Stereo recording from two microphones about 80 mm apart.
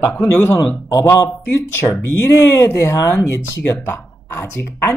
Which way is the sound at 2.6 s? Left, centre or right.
Left.